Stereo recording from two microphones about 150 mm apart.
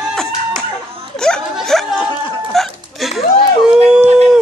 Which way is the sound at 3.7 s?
5° right (ahead or behind).